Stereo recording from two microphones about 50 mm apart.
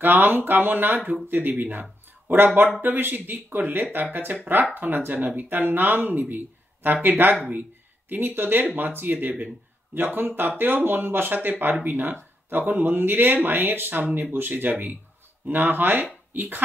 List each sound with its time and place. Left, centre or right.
0.0 s speech: right